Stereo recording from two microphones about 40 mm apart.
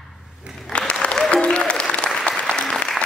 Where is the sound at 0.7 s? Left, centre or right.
Left.